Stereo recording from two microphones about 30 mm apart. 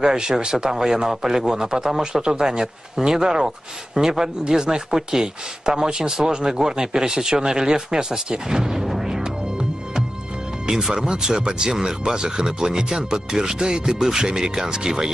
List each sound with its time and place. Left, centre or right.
0.0 s a man's voice: right
2.2 s a man's voice: right
9.1 s music: right
10.7 s a man's voice: right